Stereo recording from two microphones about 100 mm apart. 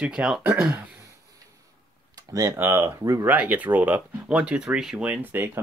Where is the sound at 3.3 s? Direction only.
15° right (ahead or behind).